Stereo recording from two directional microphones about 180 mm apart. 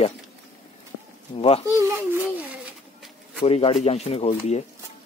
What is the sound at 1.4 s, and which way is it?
Speech, 30° left (ahead or behind).